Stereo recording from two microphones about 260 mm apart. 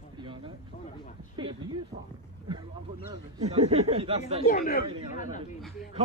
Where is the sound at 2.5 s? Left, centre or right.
Centre.